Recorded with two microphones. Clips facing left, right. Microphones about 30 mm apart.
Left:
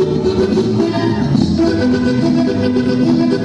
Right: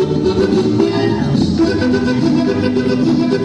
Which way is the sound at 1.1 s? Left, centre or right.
Centre.